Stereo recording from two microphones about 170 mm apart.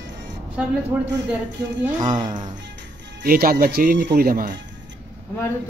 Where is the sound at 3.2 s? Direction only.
55° right (ahead or behind).